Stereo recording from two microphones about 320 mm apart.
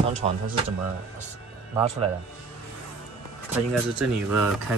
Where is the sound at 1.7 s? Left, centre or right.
Centre.